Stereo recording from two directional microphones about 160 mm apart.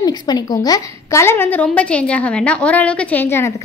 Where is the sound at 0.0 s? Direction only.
25° left (ahead or behind).